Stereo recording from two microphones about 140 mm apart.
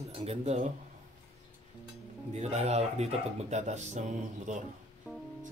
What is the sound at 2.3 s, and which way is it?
Speech, 55° right (ahead or behind).